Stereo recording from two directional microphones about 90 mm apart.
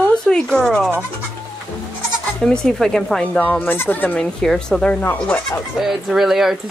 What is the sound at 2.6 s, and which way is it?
Speech, 5° left (ahead or behind).